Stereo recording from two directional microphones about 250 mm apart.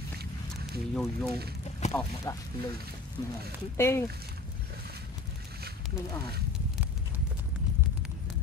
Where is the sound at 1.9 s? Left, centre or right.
Centre.